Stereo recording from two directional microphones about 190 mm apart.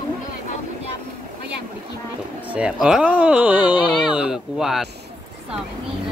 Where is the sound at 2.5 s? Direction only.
5° right (ahead or behind).